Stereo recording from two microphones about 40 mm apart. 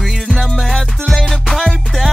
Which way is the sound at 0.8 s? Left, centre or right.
Centre.